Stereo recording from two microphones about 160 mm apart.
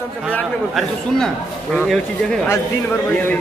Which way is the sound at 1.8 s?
Centre (ahead or behind).